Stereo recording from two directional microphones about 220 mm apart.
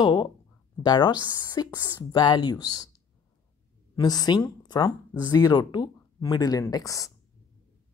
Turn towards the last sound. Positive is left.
turn(degrees=15)  # may be behind; listen again after turning